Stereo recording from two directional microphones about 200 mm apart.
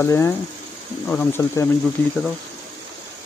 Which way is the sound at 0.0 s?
15° left (ahead or behind).